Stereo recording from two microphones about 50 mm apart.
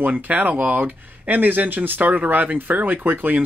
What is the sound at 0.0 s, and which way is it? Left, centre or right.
Speech, right.